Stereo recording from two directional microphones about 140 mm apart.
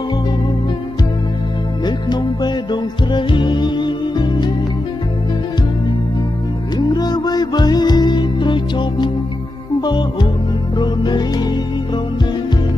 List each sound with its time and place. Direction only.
1.9 s music: 30° left (ahead or behind)
6.8 s music: 30° left (ahead or behind)